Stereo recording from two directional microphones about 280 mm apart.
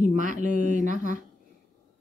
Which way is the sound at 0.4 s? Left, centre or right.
Right.